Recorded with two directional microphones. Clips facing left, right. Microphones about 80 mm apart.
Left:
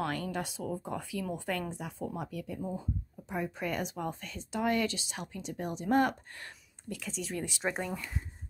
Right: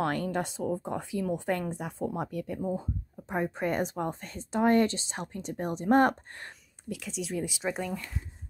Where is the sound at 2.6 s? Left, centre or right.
Right.